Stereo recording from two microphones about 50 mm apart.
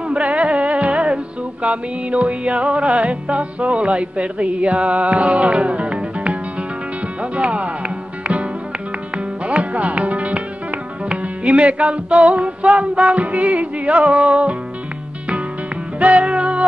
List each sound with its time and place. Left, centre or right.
0.1 s music: right
7.2 s speech: right
9.1 s music: right
16.0 s music: right